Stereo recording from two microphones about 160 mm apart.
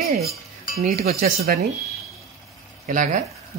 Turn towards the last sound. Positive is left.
turn(degrees=-55)  # may be behind; listen again after turning